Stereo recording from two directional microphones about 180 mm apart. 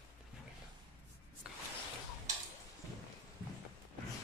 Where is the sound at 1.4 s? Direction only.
5° right (ahead or behind).